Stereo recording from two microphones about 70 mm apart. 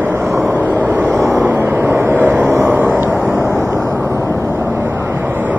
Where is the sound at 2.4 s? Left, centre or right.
Right.